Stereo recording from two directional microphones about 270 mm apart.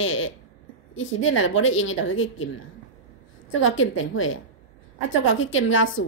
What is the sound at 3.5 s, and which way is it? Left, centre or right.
A woman's voice, left.